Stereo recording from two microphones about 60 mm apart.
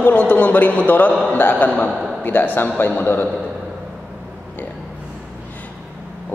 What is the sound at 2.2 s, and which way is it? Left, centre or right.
A man's voice, left.